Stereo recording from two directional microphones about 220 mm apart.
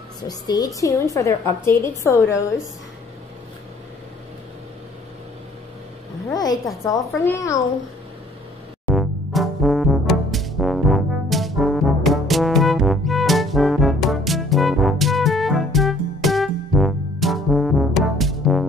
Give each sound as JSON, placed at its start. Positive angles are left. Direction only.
{"t": 0.3, "sound": "a woman's voice", "side_deg": 15}
{"t": 6.3, "sound": "a woman's voice", "side_deg": 15}
{"t": 8.8, "sound": "music", "side_deg": 0}